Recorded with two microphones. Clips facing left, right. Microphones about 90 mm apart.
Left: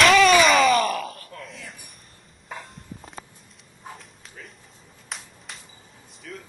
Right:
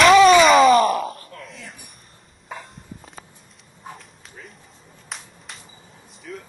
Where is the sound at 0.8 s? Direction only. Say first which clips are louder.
Right 5 dB; 45° right (ahead or behind).